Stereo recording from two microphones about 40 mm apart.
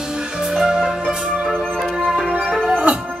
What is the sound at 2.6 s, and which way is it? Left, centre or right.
Music, right.